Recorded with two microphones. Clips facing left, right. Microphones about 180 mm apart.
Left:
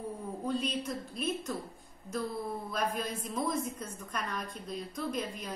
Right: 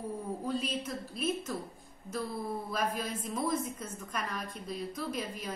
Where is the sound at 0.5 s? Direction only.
5° right (ahead or behind).